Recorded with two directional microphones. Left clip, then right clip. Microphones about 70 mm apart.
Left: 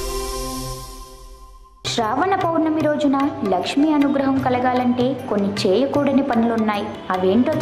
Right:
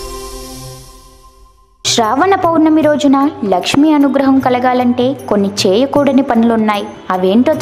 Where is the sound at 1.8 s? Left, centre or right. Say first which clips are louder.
Right 9 dB; right.